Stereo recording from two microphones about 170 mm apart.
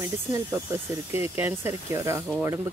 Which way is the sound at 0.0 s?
15° right (ahead or behind).